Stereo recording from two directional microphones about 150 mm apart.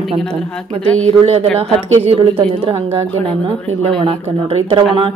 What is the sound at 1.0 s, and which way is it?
A woman's voice, 45° right (ahead or behind).